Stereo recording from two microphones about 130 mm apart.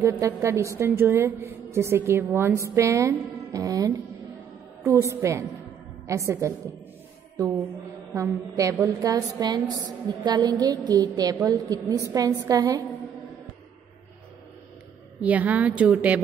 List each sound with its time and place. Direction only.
0.2 s a woman's voice: 20° right (ahead or behind)
8.1 s a woman's voice: 25° right (ahead or behind)
15.1 s a woman's voice: 10° right (ahead or behind)